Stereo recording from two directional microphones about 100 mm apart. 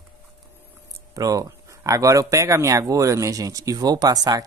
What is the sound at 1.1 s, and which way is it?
Speech, 35° right (ahead or behind).